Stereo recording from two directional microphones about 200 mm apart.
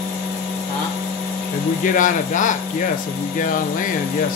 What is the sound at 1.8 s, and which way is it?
Speech, 40° left (ahead or behind).